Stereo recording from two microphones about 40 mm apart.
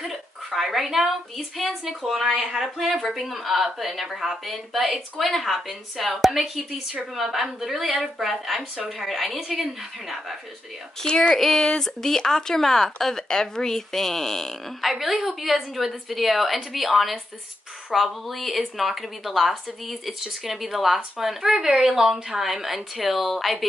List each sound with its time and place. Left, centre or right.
0.0 s a woman's voice: centre
2.3 s speech: right
3.0 s a woman's voice: centre
11.0 s speech: centre
14.8 s a woman's voice: centre